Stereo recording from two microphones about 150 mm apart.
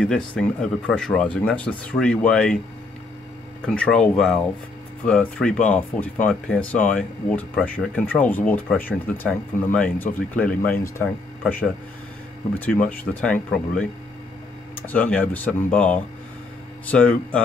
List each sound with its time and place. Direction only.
0.0 s speech: 5° left (ahead or behind)
3.6 s speech: 5° left (ahead or behind)
14.9 s speech: 10° left (ahead or behind)